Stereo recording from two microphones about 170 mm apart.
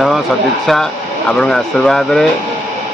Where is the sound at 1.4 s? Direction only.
Centre (ahead or behind).